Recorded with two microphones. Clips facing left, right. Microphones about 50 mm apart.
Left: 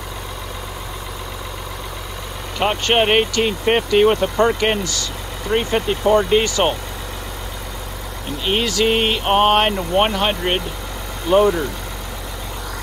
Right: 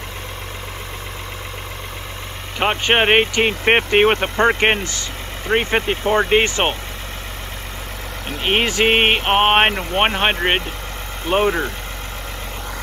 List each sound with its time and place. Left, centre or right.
2.6 s speech: right
3.6 s speech: right
8.5 s speech: right
8.8 s speech: right